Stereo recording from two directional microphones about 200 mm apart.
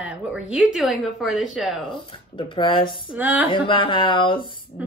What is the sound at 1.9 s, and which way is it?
Speech, 25° left (ahead or behind).